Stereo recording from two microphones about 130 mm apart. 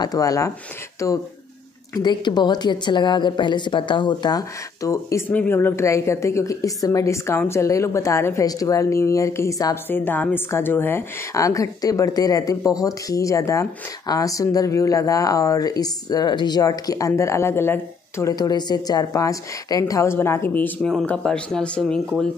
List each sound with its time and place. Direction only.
0.0 s a woman's voice: 30° left (ahead or behind)
2.0 s a woman's voice: 35° left (ahead or behind)
5.3 s a woman's voice: 15° left (ahead or behind)
9.8 s a woman's voice: 15° left (ahead or behind)